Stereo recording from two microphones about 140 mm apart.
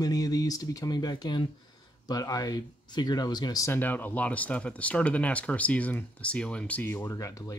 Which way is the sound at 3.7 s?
15° left (ahead or behind).